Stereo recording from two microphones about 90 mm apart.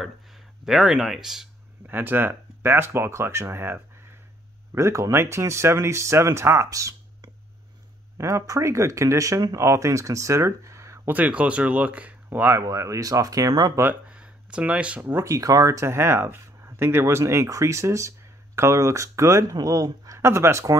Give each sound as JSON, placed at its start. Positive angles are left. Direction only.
{"t": 0.7, "sound": "speech", "side_deg": -5}
{"t": 1.9, "sound": "speech", "side_deg": -20}
{"t": 11.1, "sound": "speech", "side_deg": -15}
{"t": 12.5, "sound": "speech", "side_deg": -35}
{"t": 14.0, "sound": "a sound", "side_deg": -15}
{"t": 15.1, "sound": "speech", "side_deg": -35}